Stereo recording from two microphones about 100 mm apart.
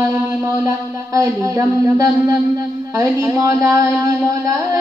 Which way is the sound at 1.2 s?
30° right (ahead or behind).